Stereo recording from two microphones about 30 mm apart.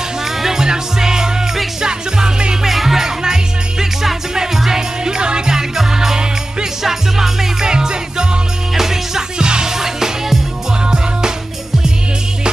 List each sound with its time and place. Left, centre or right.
0.2 s music: centre
2.6 s music: centre
4.6 s music: centre
7.6 s music: right
8.7 s music: centre
9.4 s music: right